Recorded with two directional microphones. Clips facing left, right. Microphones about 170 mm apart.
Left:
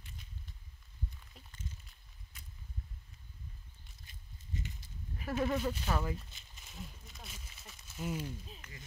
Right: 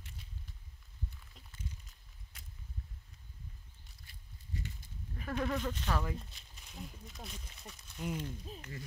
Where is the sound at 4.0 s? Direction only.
20° left (ahead or behind).